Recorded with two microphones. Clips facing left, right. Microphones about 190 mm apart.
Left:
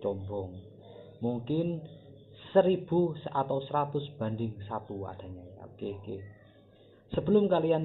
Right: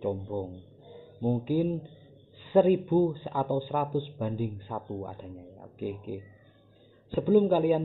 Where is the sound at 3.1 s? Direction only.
10° right (ahead or behind).